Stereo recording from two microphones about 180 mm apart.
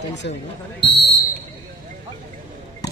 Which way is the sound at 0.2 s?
65° left (ahead or behind).